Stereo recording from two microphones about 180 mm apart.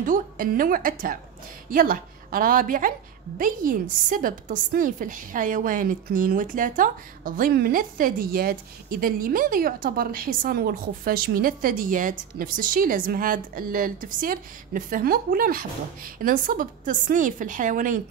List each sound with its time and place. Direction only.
0.0 s a woman's voice: 50° right (ahead or behind)